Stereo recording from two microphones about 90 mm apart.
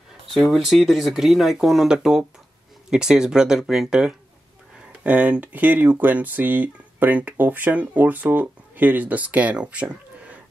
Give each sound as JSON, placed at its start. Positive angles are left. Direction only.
{"t": 0.5, "sound": "speech", "side_deg": 0}